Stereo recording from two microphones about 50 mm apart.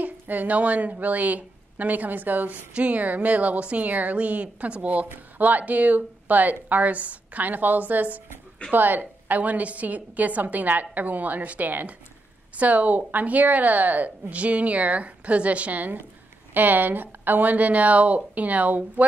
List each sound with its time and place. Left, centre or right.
0.0 s a woman's voice: right